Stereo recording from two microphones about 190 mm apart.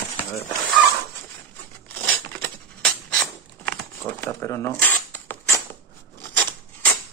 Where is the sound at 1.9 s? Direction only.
10° left (ahead or behind).